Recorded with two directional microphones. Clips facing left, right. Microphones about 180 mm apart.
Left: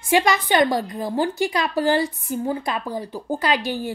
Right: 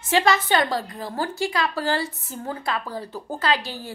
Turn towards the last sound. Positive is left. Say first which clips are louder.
# left 3 dB
turn(degrees=15)  # may be behind; listen again after turning